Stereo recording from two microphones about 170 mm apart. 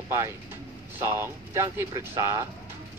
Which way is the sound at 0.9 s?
15° right (ahead or behind).